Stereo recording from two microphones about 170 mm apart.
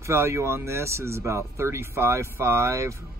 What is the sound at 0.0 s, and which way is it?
Speech, 15° right (ahead or behind).